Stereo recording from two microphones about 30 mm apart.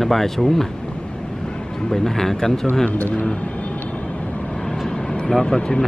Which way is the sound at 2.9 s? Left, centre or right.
Left.